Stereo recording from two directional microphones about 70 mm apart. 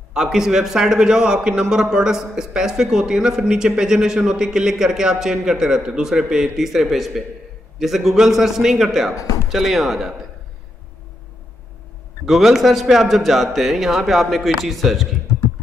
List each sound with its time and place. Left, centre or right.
0.1 s a man's voice: centre
9.1 s speech: left
9.5 s speech: centre
12.3 s speech: centre